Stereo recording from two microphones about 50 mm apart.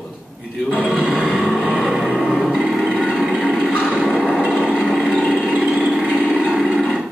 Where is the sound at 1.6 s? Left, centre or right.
Centre.